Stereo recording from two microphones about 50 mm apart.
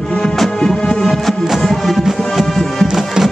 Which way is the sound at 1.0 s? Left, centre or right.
Centre.